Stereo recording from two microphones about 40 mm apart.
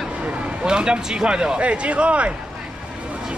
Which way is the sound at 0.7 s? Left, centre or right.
Right.